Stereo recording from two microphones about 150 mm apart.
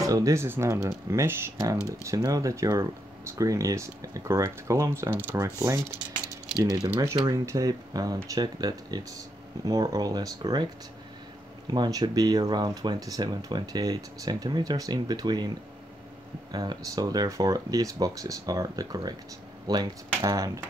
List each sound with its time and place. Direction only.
0.0 s speech: 20° right (ahead or behind)
16.5 s speech: 25° right (ahead or behind)